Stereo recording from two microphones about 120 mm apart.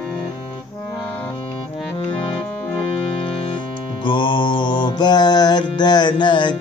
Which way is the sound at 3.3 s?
50° left (ahead or behind).